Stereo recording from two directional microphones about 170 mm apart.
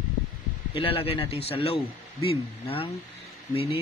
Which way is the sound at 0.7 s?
30° left (ahead or behind).